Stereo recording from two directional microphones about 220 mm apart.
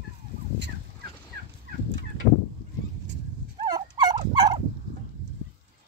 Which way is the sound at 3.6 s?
20° right (ahead or behind).